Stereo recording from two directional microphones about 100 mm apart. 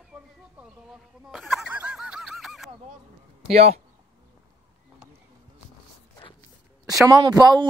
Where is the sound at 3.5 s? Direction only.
90° right.